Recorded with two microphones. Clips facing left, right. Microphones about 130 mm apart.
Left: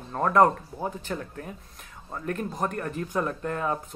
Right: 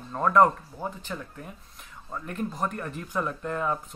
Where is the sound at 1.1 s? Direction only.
60° left (ahead or behind).